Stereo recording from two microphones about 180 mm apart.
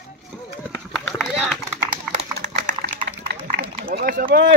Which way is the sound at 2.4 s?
40° right (ahead or behind).